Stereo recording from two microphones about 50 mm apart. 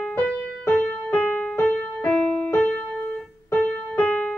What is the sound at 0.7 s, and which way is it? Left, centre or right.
Music, centre.